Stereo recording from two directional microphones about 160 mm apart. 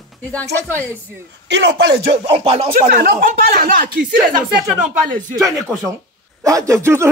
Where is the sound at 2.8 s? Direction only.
60° right (ahead or behind).